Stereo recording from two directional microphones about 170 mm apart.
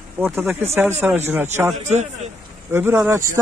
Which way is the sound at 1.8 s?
40° right (ahead or behind).